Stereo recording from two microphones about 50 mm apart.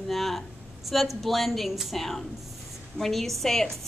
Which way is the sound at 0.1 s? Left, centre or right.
Centre.